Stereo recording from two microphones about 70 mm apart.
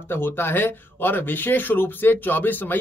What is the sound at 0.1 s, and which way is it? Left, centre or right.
Speech, left.